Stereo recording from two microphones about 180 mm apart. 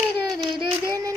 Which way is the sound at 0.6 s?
25° right (ahead or behind).